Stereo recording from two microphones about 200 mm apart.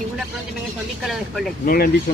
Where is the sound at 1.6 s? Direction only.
50° left (ahead or behind).